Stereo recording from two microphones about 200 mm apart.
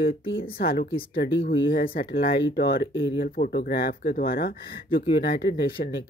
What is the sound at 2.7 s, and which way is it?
Speech, 25° left (ahead or behind).